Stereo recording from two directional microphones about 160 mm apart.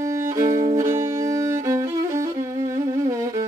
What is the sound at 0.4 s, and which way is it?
Music, 20° right (ahead or behind).